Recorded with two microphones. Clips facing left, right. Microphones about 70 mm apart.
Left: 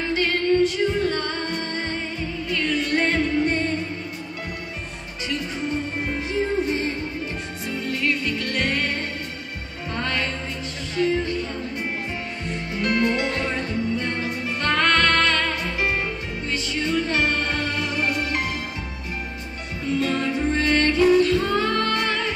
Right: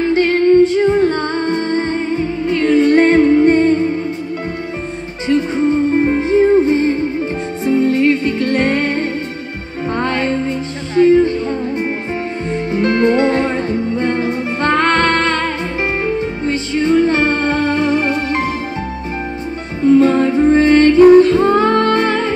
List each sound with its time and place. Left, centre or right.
0.1 s music: right
5.3 s music: right
12.4 s music: right
19.8 s music: right